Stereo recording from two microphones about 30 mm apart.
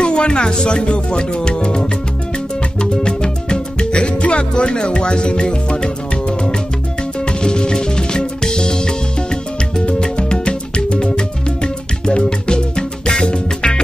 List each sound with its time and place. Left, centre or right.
0.0 s music: left
2.8 s music: left